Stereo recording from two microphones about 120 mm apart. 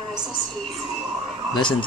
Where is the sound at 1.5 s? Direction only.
40° left (ahead or behind).